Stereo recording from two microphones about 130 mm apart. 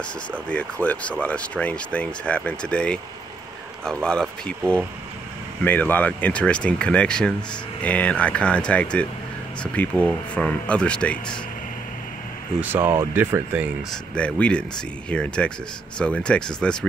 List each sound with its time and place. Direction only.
0.5 s speech: 10° left (ahead or behind)
12.5 s speech: 15° right (ahead or behind)
14.1 s speech: 10° left (ahead or behind)